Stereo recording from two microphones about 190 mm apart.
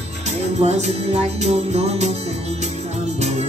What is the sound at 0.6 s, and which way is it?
Music, 35° right (ahead or behind).